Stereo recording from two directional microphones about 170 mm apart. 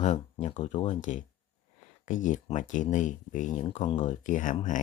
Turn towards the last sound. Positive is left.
turn(degrees=50)  # may be behind; listen again after turning